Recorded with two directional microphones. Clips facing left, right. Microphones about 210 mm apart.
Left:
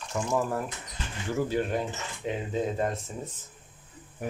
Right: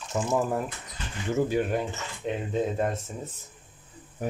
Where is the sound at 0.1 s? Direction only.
25° right (ahead or behind).